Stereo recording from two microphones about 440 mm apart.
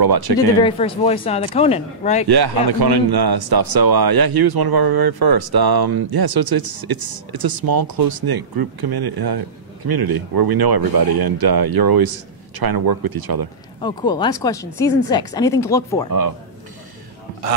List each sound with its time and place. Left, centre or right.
0.0 s speech: right
0.6 s speech: centre
2.2 s a man's voice: right
13.7 s speech: centre